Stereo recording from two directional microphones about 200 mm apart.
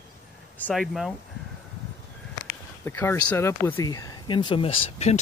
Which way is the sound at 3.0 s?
10° left (ahead or behind).